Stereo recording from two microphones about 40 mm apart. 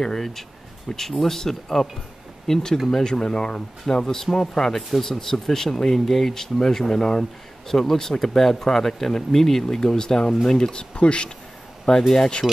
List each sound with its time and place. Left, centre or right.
0.0 s speech: centre
10.6 s speech: left